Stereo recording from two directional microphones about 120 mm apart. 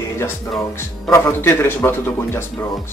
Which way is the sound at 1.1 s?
20° left (ahead or behind).